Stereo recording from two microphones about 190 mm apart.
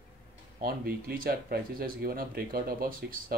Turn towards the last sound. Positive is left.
turn(degrees=-50)  # may be behind; listen again after turning